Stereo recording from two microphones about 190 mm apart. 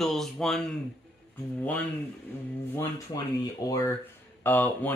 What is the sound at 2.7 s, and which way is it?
Speech, 15° left (ahead or behind).